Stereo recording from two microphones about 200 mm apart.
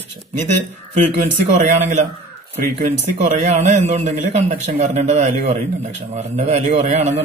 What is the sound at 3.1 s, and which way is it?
A man's voice, 35° right (ahead or behind).